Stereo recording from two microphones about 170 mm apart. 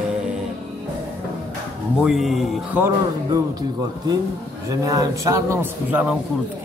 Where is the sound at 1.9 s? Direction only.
Centre (ahead or behind).